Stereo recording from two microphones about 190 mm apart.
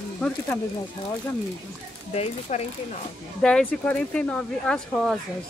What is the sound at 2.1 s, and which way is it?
Speech, 35° left (ahead or behind).